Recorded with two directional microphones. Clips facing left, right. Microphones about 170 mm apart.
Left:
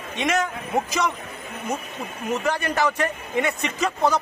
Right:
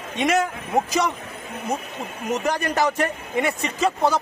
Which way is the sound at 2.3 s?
40° right (ahead or behind).